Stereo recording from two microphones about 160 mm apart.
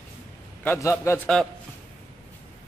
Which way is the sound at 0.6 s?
15° left (ahead or behind).